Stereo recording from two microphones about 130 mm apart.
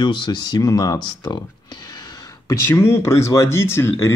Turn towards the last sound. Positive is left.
turn(degrees=20)  # may be behind; listen again after turning